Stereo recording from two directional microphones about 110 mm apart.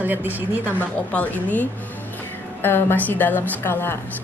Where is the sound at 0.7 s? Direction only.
15° left (ahead or behind).